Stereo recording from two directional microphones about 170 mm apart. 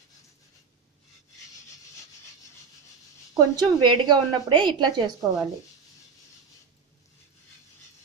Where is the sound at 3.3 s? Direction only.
25° right (ahead or behind).